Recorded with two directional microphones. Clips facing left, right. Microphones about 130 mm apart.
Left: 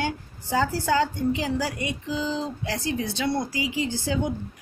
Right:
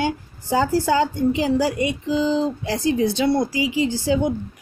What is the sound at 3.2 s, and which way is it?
Speech, 15° right (ahead or behind).